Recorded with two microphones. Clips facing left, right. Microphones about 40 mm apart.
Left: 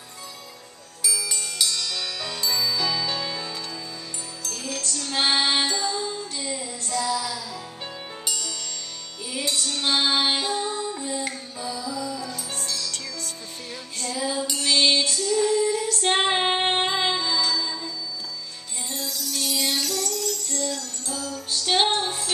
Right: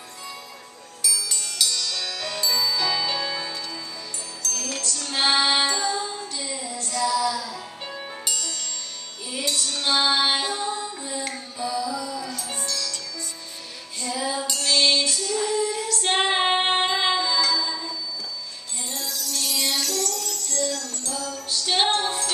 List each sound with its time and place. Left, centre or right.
1.0 s music: centre
4.4 s music: centre
4.7 s music: centre
5.7 s music: centre
6.3 s child singing: centre
7.9 s music: centre
10.4 s female singing: centre
11.8 s music: centre
12.6 s music: centre
14.1 s music: centre
14.5 s music: centre
15.1 s female singing: centre
16.8 s music: centre